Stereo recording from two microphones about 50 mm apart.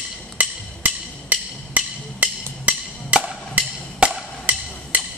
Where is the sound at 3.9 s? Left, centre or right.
Right.